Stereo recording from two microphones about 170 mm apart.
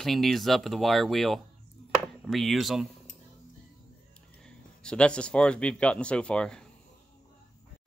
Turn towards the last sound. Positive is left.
turn(degrees=5)  # may be behind; listen again after turning